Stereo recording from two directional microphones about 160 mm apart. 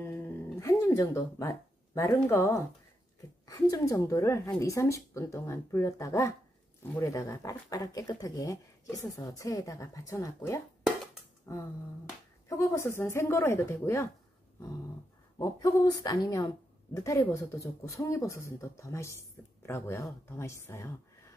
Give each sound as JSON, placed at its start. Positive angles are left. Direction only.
{"t": 0.0, "sound": "music", "side_deg": 15}
{"t": 2.2, "sound": "a woman's voice", "side_deg": 15}
{"t": 15.3, "sound": "a woman's voice", "side_deg": 20}